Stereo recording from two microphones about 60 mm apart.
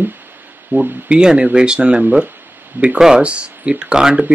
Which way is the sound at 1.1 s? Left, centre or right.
Centre.